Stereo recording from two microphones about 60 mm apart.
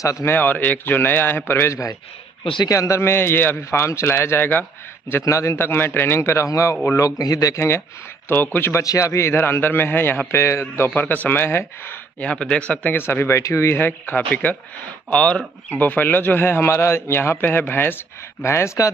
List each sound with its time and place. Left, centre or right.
0.2 s a man's voice: left
1.7 s speech: left
3.0 s a man's voice: left
3.8 s speech: left
5.2 s speech: left
5.6 s speech: left
7.0 s a man's voice: left
7.5 s speech: left
8.7 s speech: left
9.3 s a man's voice: left
11.0 s a man's voice: left
12.2 s speech: centre
12.9 s a man's voice: left
18.4 s speech: left